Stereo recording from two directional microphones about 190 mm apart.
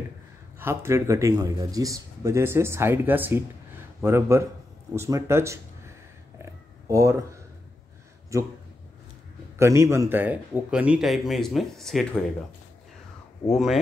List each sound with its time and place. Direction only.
0.6 s speech: 15° right (ahead or behind)
6.3 s a sound: 15° right (ahead or behind)
8.3 s speech: 15° right (ahead or behind)
9.6 s speech: 15° right (ahead or behind); by 12.2 s 5° left (ahead or behind)
13.5 s speech: centre (ahead or behind)